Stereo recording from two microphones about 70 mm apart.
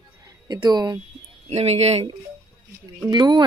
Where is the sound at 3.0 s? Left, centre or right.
Right.